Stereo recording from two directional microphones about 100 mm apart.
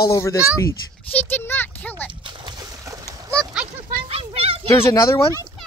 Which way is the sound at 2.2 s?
50° right (ahead or behind).